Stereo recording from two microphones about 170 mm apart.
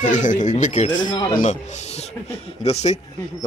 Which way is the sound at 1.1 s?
25° left (ahead or behind).